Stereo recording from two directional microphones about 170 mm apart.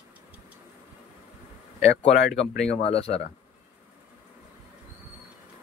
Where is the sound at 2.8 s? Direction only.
35° left (ahead or behind).